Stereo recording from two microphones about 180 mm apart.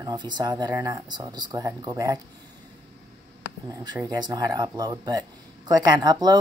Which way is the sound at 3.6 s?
20° right (ahead or behind).